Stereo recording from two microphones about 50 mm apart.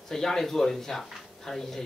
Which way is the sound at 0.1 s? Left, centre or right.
Centre.